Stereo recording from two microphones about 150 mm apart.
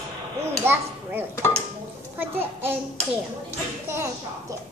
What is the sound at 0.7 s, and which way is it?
Speech, 15° right (ahead or behind).